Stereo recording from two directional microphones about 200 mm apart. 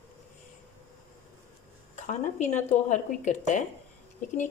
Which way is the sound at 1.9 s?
35° left (ahead or behind).